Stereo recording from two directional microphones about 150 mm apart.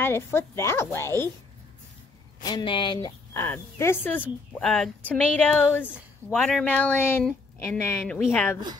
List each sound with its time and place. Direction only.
0.0 s speech: 15° left (ahead or behind)
2.5 s speech: 35° left (ahead or behind)
3.3 s speech: 15° left (ahead or behind)